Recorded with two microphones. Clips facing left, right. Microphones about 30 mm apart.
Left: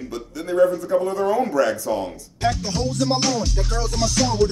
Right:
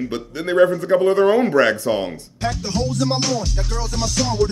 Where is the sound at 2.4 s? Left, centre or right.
Centre.